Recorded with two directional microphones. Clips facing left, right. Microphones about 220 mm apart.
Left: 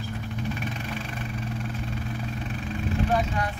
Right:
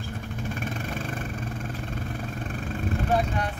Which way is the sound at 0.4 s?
50° right (ahead or behind).